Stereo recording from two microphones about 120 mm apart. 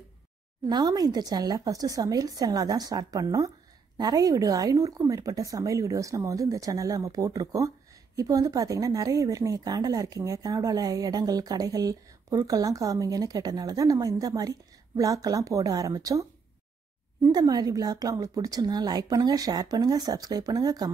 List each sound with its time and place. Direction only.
0.7 s speech: 35° right (ahead or behind)
17.3 s speech: 35° right (ahead or behind)